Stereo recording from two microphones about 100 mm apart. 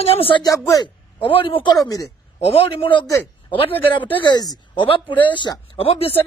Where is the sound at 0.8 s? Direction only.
60° left (ahead or behind).